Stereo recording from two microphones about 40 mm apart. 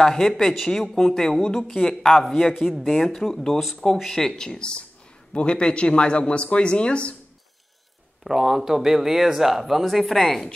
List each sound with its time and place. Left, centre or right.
0.0 s a woman's voice: centre
1.7 s a woman's voice: centre; by 7.2 s left
8.2 s speech: centre